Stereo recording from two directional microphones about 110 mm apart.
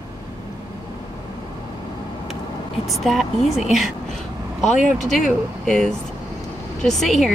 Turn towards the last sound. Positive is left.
turn(degrees=0)  # may be behind; listen again after turning